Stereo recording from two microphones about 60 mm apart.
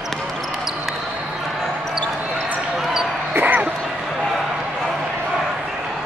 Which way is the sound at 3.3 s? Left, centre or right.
Right.